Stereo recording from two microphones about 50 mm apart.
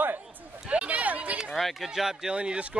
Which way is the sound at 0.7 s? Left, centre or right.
Right.